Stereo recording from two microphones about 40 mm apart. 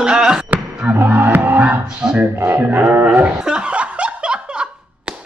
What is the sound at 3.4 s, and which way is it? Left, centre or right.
Laughter, right.